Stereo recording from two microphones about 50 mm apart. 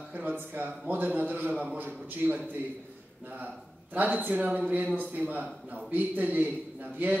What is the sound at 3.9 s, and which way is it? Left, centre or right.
A man's voice, right.